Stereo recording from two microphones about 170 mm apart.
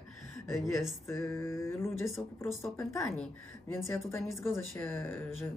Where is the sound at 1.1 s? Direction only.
15° left (ahead or behind).